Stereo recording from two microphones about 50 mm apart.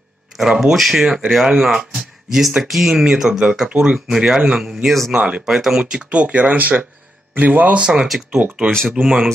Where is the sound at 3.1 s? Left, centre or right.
Centre.